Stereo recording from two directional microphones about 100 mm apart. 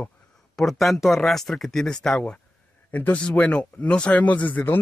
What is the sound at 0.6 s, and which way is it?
Speech, centre (ahead or behind).